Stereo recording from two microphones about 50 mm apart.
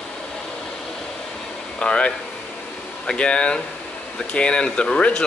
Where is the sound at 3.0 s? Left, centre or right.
Centre.